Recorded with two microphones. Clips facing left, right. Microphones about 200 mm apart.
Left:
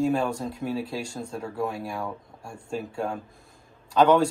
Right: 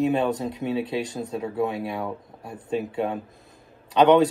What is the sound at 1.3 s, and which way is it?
Speech, 5° right (ahead or behind).